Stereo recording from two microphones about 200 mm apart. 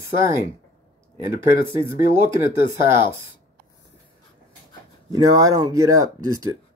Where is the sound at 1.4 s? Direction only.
10° right (ahead or behind).